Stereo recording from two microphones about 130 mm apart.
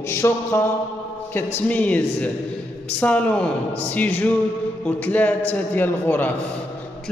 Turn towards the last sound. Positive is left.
turn(degrees=15)  # may be behind; listen again after turning